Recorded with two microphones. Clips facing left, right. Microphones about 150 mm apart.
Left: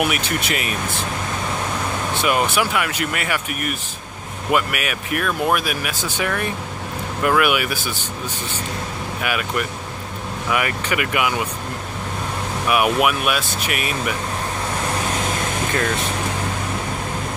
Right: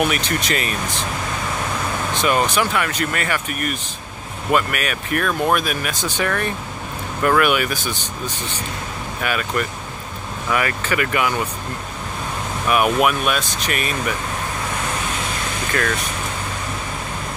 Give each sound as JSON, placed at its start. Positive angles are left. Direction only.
{"t": 0.0, "sound": "speech", "side_deg": 10}
{"t": 2.2, "sound": "speech", "side_deg": 10}
{"t": 9.2, "sound": "speech", "side_deg": 10}
{"t": 12.6, "sound": "speech", "side_deg": 10}
{"t": 15.7, "sound": "speech", "side_deg": 20}